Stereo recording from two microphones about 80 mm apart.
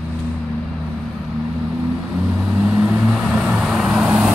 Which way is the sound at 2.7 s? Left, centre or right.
Centre.